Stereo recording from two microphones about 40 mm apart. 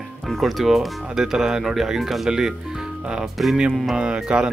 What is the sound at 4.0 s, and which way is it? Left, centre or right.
Speech, right.